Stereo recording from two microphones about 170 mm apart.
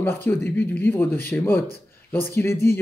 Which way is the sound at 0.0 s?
10° left (ahead or behind).